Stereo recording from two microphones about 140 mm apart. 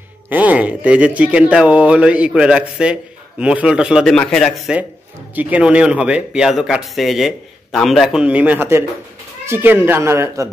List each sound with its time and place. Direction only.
0.3 s speech: 10° right (ahead or behind)
4.0 s a man's voice: 5° left (ahead or behind)
5.3 s speech: 10° right (ahead or behind)